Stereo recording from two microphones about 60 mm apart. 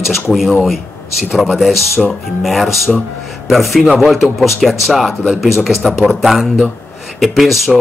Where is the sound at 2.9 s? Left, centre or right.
Centre.